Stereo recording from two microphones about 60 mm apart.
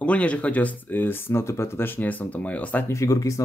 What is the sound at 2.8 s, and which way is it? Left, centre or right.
Speech, left.